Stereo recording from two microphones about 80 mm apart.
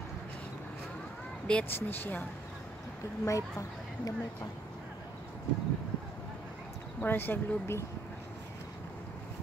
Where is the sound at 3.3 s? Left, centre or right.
Left.